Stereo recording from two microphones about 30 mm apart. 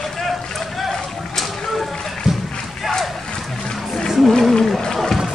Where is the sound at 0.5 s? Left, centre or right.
Centre.